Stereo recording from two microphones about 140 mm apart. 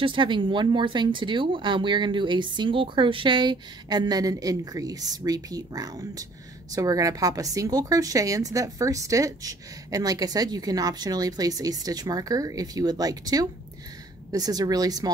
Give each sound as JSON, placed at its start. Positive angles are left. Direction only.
{"t": 0.0, "sound": "a woman's voice", "side_deg": -35}